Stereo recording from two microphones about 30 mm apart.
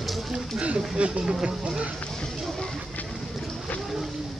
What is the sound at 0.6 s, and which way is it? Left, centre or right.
Speech, right.